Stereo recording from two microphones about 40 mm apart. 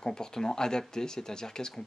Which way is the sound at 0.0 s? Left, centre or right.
Centre.